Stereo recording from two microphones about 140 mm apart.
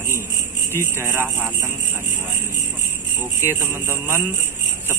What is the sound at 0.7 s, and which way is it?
Speech, 15° right (ahead or behind).